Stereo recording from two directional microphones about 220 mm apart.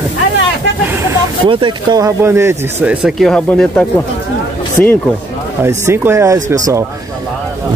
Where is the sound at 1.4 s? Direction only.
20° right (ahead or behind); by 3.8 s 5° left (ahead or behind).